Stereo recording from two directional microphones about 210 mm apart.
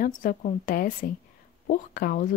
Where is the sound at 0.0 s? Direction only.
40° left (ahead or behind).